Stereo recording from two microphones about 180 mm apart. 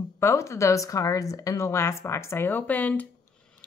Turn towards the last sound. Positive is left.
turn(degrees=10)  # may be behind; listen again after turning